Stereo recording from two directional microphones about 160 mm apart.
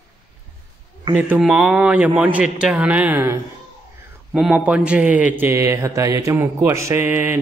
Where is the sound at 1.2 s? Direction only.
5° right (ahead or behind).